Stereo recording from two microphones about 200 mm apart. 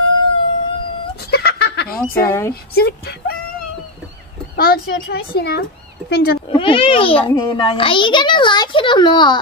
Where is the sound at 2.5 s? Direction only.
50° left (ahead or behind).